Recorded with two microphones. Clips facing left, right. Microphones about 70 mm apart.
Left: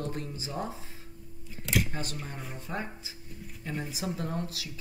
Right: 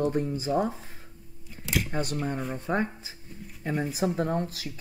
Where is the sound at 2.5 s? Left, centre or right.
Right.